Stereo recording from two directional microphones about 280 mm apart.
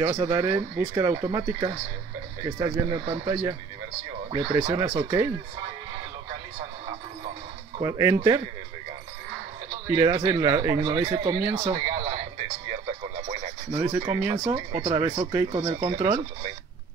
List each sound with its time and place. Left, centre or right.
0.0 s speech: centre
7.8 s speech: centre
9.8 s speech: centre
12.8 s radio: centre
13.7 s speech: centre